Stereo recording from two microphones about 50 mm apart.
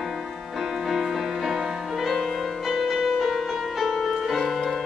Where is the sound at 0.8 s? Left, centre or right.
Centre.